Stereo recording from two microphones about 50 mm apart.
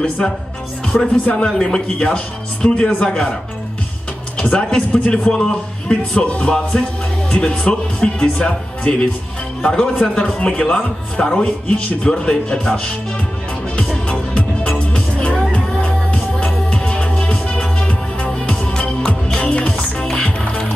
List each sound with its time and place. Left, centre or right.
1.0 s speech: left
3.1 s speech: centre
4.4 s speech: centre
14.3 s music: left